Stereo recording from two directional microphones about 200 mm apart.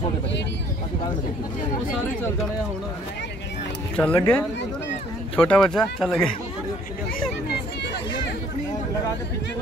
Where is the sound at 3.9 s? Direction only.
10° left (ahead or behind).